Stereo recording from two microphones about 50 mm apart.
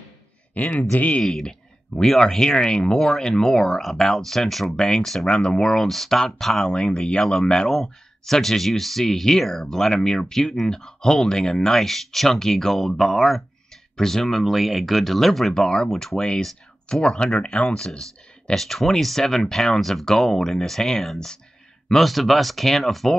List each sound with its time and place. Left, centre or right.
0.6 s speech: left
1.2 s speech: centre